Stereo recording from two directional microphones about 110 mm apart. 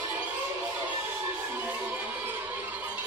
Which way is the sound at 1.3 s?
15° right (ahead or behind).